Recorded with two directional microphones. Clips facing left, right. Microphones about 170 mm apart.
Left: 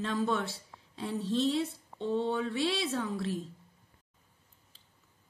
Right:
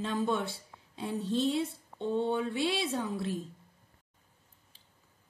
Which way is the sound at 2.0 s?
10° right (ahead or behind).